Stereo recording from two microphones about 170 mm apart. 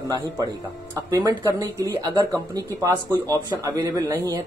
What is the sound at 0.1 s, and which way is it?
Speech, 20° right (ahead or behind).